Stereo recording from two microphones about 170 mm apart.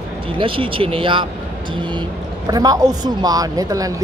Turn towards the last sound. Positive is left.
turn(degrees=-20)  # may be behind; listen again after turning